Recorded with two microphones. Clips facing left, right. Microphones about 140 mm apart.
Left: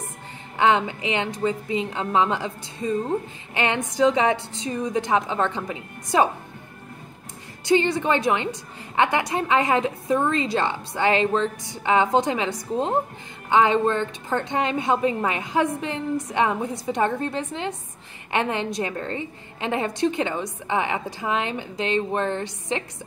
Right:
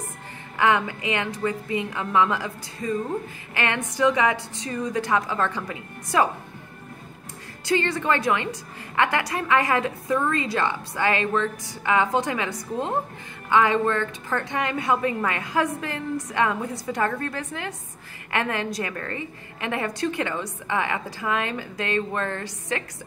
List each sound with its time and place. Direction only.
0.6 s a woman's voice: 25° left (ahead or behind)
7.6 s a woman's voice: 20° left (ahead or behind)